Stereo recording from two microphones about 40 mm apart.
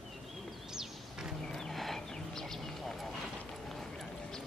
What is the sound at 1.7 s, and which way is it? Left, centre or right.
Chicken, centre.